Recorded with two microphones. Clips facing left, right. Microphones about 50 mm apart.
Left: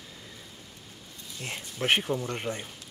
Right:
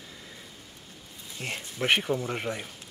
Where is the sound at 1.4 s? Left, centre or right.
Centre.